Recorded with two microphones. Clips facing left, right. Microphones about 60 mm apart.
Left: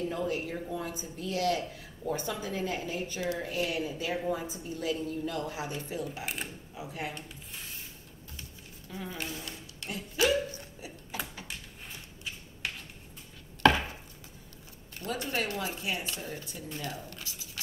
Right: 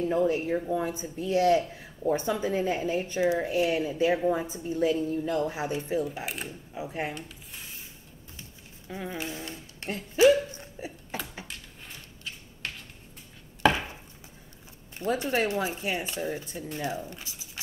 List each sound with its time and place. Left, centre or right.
0.1 s a woman's voice: right
6.2 s speech: centre
6.7 s speech: right
8.8 s speech: right
10.2 s hiccup: right
13.6 s chopping: centre
15.0 s speech: right